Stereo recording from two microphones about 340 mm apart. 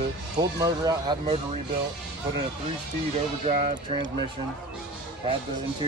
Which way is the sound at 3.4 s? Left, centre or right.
Centre.